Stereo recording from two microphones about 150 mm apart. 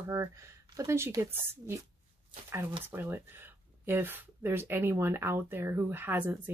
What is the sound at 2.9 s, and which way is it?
Speech, 15° right (ahead or behind).